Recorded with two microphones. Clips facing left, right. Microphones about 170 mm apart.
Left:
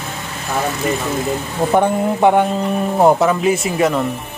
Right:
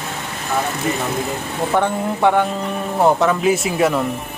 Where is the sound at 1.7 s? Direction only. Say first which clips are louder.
Left 4 dB; 15° left (ahead or behind).